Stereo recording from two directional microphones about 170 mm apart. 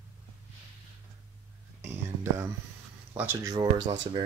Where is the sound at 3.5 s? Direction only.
25° right (ahead or behind).